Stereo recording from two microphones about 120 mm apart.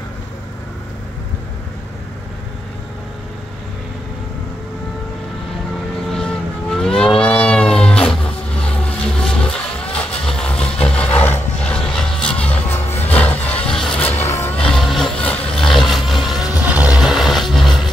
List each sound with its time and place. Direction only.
6.1 s vehicle: 5° left (ahead or behind)
14.0 s music: 20° left (ahead or behind)
14.6 s vehicle: centre (ahead or behind)
15.5 s music: 5° left (ahead or behind)